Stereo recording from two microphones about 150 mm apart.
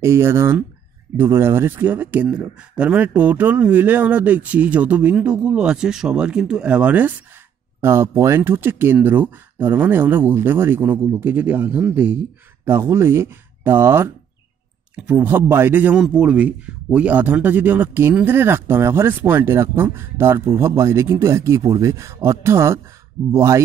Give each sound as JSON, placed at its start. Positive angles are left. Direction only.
{"t": 0.0, "sound": "speech", "side_deg": -15}